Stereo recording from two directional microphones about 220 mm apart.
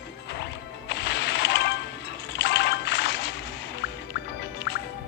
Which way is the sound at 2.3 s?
50° left (ahead or behind).